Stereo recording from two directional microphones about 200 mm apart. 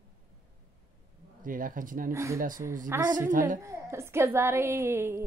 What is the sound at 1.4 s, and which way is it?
Speech, 45° right (ahead or behind).